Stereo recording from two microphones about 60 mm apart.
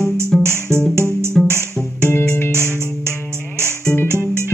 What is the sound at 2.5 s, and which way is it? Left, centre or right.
Music, right.